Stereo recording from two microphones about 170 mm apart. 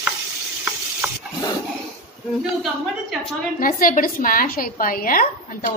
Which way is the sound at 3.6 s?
55° left (ahead or behind).